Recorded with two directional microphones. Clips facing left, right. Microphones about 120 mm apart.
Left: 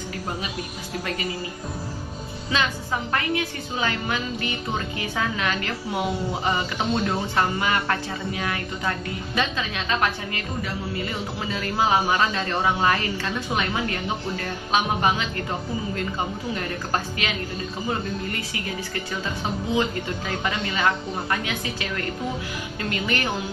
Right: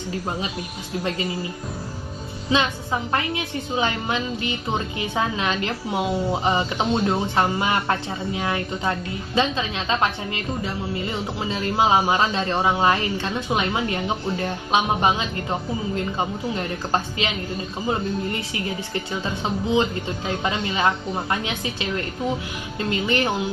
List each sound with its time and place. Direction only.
2.5 s a woman's voice: 25° right (ahead or behind)
16.5 s a woman's voice: 20° right (ahead or behind)
20.2 s a woman's voice: 25° right (ahead or behind)